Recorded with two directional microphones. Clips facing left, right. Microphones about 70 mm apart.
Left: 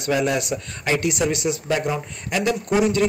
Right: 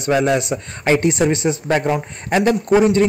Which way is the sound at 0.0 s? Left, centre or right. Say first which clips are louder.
Right 5 dB; right.